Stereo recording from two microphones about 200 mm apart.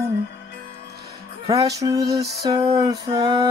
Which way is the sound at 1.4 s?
15° right (ahead or behind).